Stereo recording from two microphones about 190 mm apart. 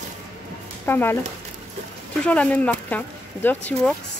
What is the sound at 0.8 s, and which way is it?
Speech, 10° left (ahead or behind).